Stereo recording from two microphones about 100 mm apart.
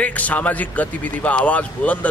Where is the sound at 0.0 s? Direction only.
15° left (ahead or behind).